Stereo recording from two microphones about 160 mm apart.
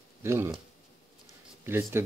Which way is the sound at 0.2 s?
15° right (ahead or behind).